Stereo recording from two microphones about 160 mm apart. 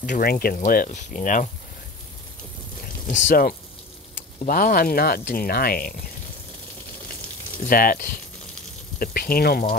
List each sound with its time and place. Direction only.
0.0 s speech: 60° left (ahead or behind)
0.7 s speech: 55° left (ahead or behind)
3.1 s speech: 60° left (ahead or behind)
7.6 s speech: 65° left (ahead or behind)